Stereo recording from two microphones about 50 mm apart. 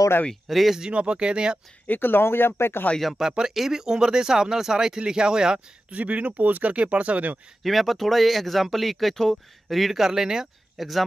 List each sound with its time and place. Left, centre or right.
0.5 s speech: centre
0.7 s speech: centre
1.9 s speech: left
3.0 s speech: centre
3.3 s speech: centre
5.9 s speech: right
7.6 s speech: centre
10.8 s speech: centre